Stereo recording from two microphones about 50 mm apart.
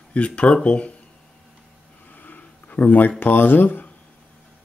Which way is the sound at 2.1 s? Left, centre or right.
Left.